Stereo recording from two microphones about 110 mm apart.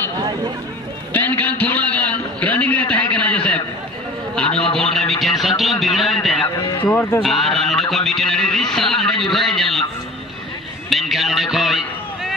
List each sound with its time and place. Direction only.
1.1 s a sound: 15° left (ahead or behind)
6.8 s speech: 15° left (ahead or behind)
7.2 s speech: centre (ahead or behind)
10.9 s music: centre (ahead or behind)